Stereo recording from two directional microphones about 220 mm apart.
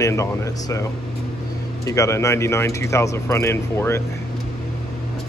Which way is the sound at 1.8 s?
15° left (ahead or behind).